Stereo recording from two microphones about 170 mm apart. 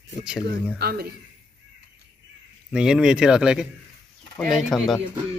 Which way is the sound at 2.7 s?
5° right (ahead or behind).